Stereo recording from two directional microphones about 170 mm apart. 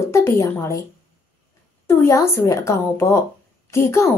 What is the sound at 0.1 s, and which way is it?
Speech, 15° left (ahead or behind).